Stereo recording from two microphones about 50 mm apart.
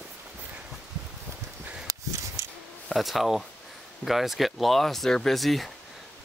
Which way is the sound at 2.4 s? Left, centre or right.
Right.